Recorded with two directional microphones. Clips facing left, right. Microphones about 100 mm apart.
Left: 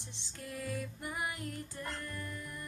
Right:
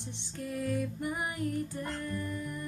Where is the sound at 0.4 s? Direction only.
35° right (ahead or behind).